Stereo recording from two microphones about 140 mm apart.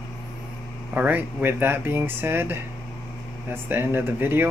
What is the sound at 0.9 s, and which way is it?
Speech, 15° right (ahead or behind).